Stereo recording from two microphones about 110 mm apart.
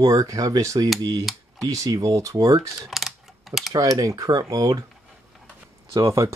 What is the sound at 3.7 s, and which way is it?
Speech, 30° right (ahead or behind).